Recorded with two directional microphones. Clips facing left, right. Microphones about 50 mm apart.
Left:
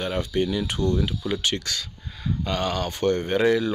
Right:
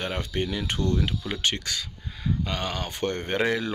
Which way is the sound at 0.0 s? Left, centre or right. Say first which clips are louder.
Left 4 dB; right.